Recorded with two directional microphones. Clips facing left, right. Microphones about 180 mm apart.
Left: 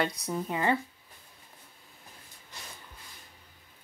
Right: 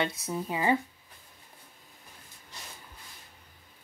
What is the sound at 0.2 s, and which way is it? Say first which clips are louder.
Speech: even; 10° right (ahead or behind).